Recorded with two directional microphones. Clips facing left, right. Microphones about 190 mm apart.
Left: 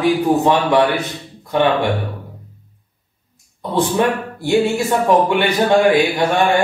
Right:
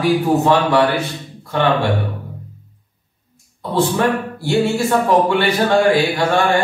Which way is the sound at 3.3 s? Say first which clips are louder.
Left 1 dB; 20° left (ahead or behind).